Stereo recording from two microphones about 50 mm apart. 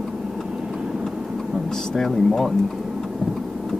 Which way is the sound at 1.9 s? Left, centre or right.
Centre.